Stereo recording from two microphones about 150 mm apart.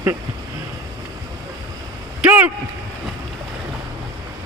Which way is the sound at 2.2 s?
10° right (ahead or behind).